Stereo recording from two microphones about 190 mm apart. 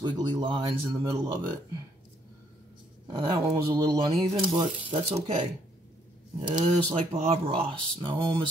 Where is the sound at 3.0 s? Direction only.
20° right (ahead or behind).